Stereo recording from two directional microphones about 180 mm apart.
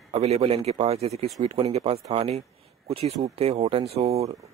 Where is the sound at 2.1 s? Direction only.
35° right (ahead or behind).